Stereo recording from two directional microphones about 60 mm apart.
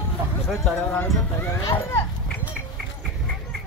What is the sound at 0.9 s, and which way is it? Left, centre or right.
Speech, left.